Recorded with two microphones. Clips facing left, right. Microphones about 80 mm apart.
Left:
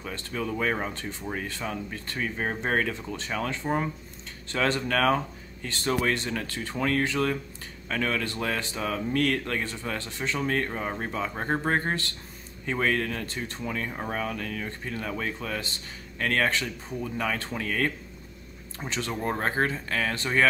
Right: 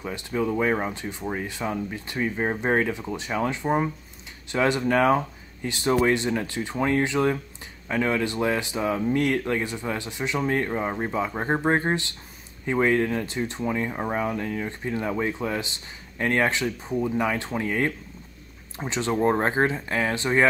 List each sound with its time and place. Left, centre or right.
0.0 s speech: centre